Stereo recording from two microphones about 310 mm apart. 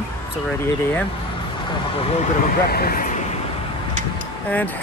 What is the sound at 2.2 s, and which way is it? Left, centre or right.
Speech, left.